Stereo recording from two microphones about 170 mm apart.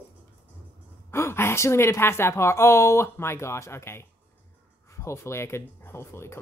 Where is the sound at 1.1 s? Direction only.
15° left (ahead or behind).